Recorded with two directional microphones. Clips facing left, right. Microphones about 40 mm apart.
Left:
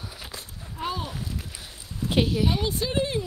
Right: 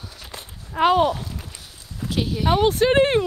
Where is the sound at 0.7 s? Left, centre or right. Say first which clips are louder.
Right 14 dB; right.